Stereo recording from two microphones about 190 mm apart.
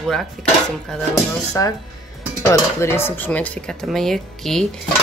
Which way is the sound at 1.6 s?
15° left (ahead or behind).